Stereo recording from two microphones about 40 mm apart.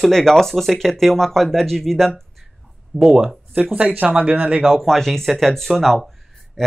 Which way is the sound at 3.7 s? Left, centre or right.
Right.